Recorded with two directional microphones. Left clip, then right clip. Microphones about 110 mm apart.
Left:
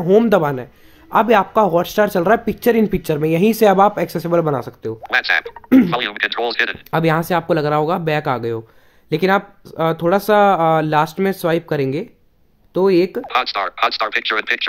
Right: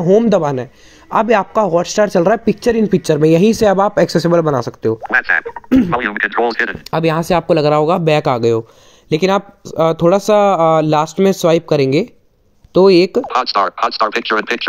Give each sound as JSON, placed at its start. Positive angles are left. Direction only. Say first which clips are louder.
{"t": 0.3, "sound": "speech", "louder": "right 2 dB", "side_deg": -20}
{"t": 5.0, "sound": "speech", "louder": "right 1 dB", "side_deg": 20}
{"t": 6.9, "sound": "speech", "louder": "right 3 dB", "side_deg": -30}
{"t": 13.3, "sound": "speech", "louder": "right 4 dB", "side_deg": 10}